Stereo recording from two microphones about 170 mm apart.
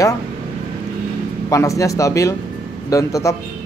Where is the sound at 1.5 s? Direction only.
20° left (ahead or behind).